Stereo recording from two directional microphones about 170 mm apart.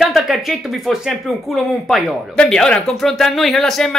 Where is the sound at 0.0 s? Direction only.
Centre (ahead or behind).